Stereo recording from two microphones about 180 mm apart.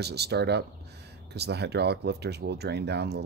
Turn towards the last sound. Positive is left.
turn(degrees=-65)  # may be behind; listen again after turning